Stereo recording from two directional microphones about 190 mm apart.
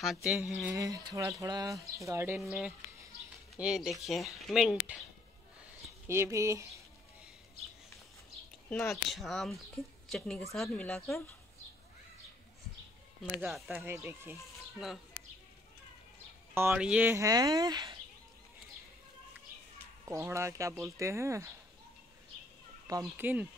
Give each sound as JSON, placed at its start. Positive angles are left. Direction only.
{"t": 0.0, "sound": "a woman's voice", "side_deg": 0}
{"t": 0.7, "sound": "a woman's voice", "side_deg": -20}
{"t": 6.0, "sound": "speech", "side_deg": -15}
{"t": 8.6, "sound": "a woman's voice", "side_deg": 5}
{"t": 13.4, "sound": "a woman's voice", "side_deg": 0}
{"t": 13.9, "sound": "speech", "side_deg": -10}
{"t": 14.3, "sound": "speech", "side_deg": 0}
{"t": 16.5, "sound": "speech", "side_deg": -10}
{"t": 20.1, "sound": "speech", "side_deg": -15}
{"t": 22.8, "sound": "speech", "side_deg": -15}